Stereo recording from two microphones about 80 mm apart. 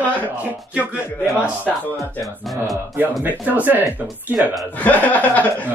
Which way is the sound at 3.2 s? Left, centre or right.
Right.